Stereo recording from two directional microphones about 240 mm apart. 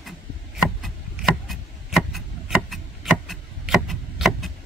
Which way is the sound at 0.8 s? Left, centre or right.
Centre.